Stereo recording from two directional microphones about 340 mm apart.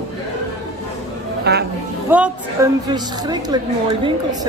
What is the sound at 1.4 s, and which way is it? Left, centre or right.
Speech, right.